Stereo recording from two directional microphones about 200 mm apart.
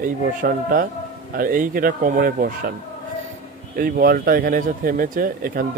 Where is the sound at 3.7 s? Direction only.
50° right (ahead or behind).